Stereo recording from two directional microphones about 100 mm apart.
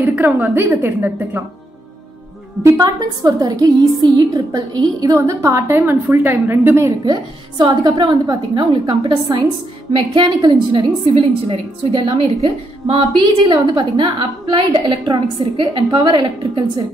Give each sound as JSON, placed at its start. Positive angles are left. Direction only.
{"t": 0.0, "sound": "a woman's voice", "side_deg": -15}
{"t": 2.6, "sound": "a woman's voice", "side_deg": -35}
{"t": 7.1, "sound": "a woman's voice", "side_deg": -45}
{"t": 11.9, "sound": "a woman's voice", "side_deg": -55}
{"t": 12.4, "sound": "speech", "side_deg": -75}
{"t": 13.1, "sound": "a woman's voice", "side_deg": -50}